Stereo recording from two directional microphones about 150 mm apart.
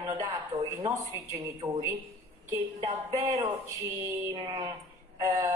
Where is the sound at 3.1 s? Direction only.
20° right (ahead or behind).